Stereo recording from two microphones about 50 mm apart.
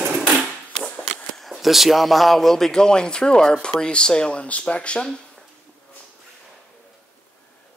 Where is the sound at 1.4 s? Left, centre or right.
Centre; by 5.1 s left.